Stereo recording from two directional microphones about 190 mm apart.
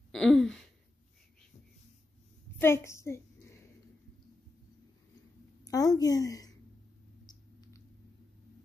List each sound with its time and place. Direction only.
0.1 s a sound: 5° left (ahead or behind)
2.6 s a child's voice: 15° left (ahead or behind)
5.7 s a woman's voice: 20° left (ahead or behind)
7.2 s mouse: 20° left (ahead or behind)